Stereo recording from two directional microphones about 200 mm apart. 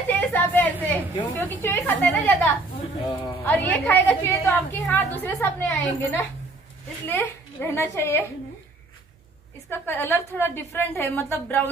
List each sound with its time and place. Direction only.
0.1 s a sound: 10° left (ahead or behind)
0.8 s a woman's voice: 10° left (ahead or behind)
3.1 s speech: 20° left (ahead or behind)
3.4 s a woman's voice: 10° left (ahead or behind)
9.7 s a woman's voice: 10° left (ahead or behind)